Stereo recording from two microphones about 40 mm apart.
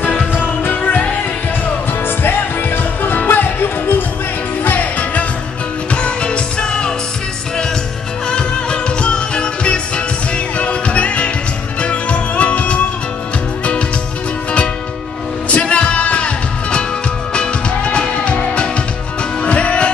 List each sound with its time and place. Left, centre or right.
0.4 s music: left
2.0 s music: left
4.6 s music: left
5.9 s music: left
8.3 s music: left
15.5 s music: left
17.3 s music: left